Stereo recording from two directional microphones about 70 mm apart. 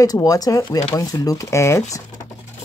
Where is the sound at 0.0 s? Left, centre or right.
Left.